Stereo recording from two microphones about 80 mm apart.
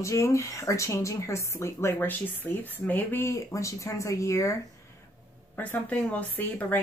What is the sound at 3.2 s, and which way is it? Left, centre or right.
Speech, left.